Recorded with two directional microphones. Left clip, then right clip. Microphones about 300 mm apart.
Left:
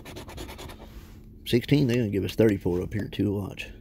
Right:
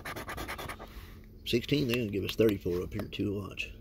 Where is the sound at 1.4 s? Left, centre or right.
Left.